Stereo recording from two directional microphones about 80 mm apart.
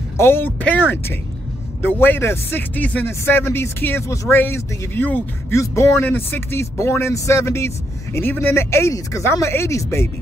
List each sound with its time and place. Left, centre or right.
0.2 s speech: left
5.5 s speech: left
5.9 s speech: left